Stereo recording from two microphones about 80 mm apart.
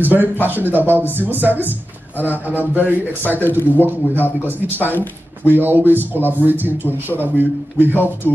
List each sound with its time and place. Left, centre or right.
0.0 s speech: right
2.8 s a man's voice: left
3.6 s speech: right
5.5 s speech: right